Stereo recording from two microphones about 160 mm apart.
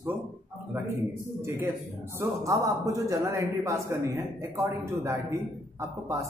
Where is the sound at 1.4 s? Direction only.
15° right (ahead or behind).